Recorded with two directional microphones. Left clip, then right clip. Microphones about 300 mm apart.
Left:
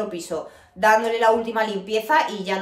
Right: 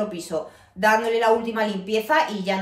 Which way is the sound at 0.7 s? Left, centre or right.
Centre.